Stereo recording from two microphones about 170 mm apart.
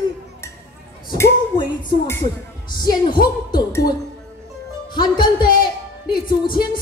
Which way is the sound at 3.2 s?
25° left (ahead or behind).